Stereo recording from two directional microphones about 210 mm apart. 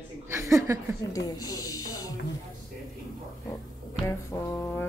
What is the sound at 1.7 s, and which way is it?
Speech, 90° left.